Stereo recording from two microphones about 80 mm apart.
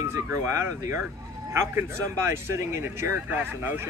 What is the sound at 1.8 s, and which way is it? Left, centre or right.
Speech, right.